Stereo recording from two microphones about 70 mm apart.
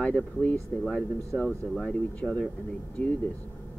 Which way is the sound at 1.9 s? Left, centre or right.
Centre.